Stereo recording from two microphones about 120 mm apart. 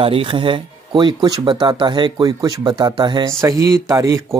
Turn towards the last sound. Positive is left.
turn(degrees=-25)  # may be behind; listen again after turning